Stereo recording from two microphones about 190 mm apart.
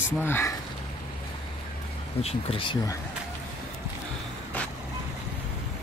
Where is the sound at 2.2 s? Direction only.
30° left (ahead or behind).